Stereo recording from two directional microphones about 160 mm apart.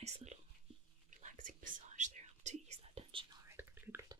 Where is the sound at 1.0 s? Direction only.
55° right (ahead or behind); by 3.3 s 35° right (ahead or behind).